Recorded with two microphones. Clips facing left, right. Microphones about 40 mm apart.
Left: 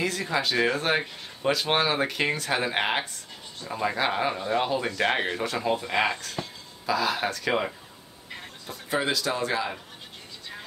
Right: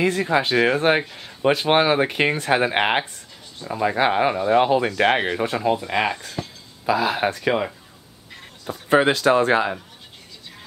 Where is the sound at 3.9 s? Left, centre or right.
Right.